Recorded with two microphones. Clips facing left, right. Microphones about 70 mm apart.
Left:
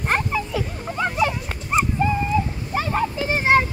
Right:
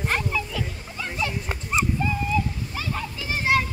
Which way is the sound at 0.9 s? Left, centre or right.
Left.